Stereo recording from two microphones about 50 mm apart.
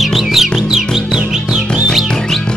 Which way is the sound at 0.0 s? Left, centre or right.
Centre.